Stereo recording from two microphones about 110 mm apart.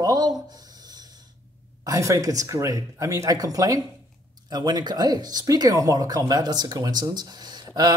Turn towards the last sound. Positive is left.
turn(degrees=-40)  # may be behind; listen again after turning